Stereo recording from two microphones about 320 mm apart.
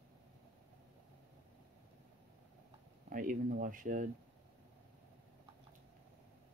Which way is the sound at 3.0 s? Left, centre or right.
Right.